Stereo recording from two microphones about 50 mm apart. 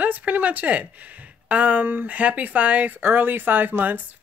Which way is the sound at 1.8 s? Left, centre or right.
Right.